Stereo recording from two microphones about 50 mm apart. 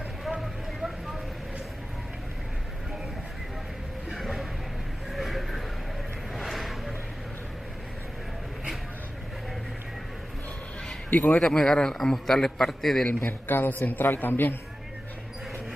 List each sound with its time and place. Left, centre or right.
4.1 s a sound: centre
11.1 s speech: left
11.3 s a man's voice: centre
13.5 s a man's voice: left